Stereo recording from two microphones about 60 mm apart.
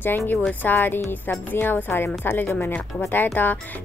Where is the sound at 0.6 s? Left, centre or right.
Left.